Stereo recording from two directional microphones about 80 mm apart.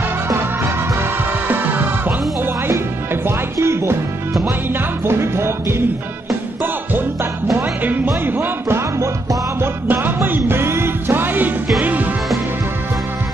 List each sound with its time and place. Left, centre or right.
1.5 s music: right
3.3 s music: right
5.0 s music: right